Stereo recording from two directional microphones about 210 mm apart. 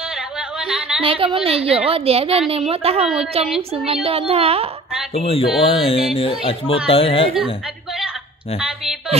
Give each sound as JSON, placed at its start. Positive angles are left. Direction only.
{"t": 0.4, "sound": "a sound", "side_deg": -5}
{"t": 1.0, "sound": "a woman's voice", "side_deg": -25}
{"t": 5.2, "sound": "music", "side_deg": 25}
{"t": 8.5, "sound": "a woman's voice", "side_deg": -5}